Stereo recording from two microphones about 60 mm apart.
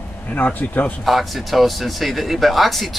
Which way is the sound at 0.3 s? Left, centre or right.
Left.